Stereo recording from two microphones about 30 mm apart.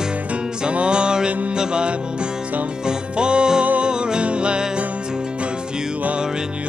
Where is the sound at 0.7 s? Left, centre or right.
Right.